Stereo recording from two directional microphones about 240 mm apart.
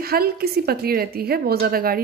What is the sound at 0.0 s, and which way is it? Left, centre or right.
A woman's voice, right.